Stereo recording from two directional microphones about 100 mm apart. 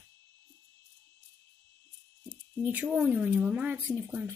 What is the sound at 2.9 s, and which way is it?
Speech, 10° right (ahead or behind).